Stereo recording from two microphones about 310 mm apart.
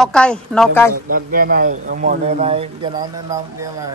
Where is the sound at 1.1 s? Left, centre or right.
Right.